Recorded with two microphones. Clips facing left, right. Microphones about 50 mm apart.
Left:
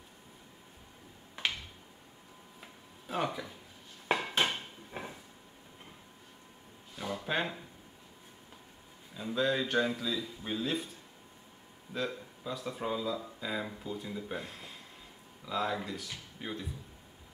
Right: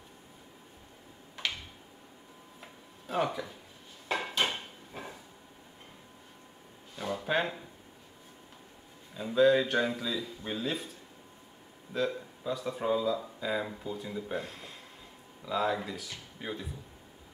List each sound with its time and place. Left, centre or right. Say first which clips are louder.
2.6 s a sound: right 2 dB; centre
4.1 s dishes: left 2 dB; left
4.9 s train: left 1 dB; left
7.0 s a sound: right 3 dB; centre
9.1 s speech: right 7 dB; centre
11.9 s speech: right 4 dB; centre